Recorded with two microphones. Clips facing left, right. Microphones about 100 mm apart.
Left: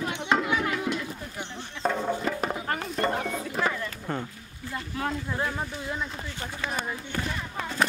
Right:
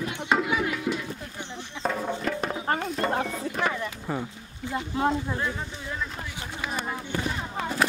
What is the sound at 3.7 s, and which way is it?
Speech, 15° right (ahead or behind).